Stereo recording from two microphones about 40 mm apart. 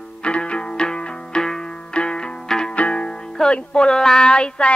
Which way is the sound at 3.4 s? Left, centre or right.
Left.